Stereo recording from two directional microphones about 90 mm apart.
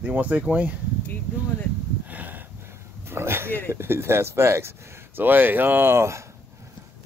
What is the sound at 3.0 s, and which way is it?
Speech, 25° right (ahead or behind).